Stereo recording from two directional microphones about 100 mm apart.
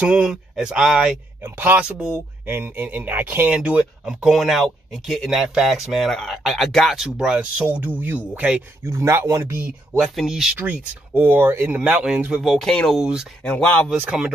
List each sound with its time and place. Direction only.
0.0 s speech: 5° right (ahead or behind)
1.4 s speech: 20° right (ahead or behind)
2.4 s speech: 20° right (ahead or behind)
3.5 s speech: 5° right (ahead or behind)
8.8 s speech: 30° right (ahead or behind)
9.9 s speech: 5° right (ahead or behind)
11.1 s speech: 20° right (ahead or behind)
12.4 s speech: 5° left (ahead or behind)